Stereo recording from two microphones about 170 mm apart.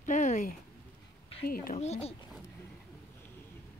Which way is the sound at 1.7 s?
40° left (ahead or behind).